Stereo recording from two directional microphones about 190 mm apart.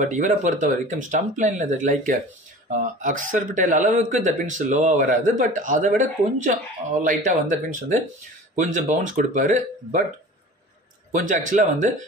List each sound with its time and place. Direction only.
0.0 s speech: 40° right (ahead or behind)
11.1 s speech: 40° right (ahead or behind)